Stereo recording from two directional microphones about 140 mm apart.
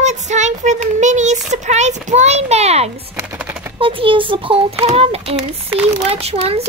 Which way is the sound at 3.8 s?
40° right (ahead or behind).